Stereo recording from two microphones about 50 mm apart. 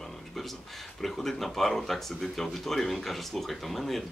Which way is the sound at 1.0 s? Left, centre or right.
Centre.